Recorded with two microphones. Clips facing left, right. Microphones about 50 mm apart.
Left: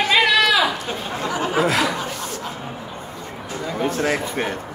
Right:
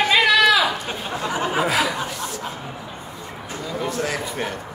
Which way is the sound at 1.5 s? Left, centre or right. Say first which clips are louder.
Left 2 dB; centre.